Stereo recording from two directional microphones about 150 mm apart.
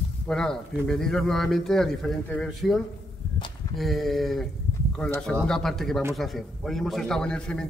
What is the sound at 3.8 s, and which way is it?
Speech, centre (ahead or behind).